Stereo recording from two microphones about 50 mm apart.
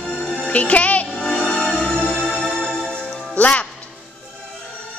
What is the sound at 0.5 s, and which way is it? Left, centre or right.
Speech, left.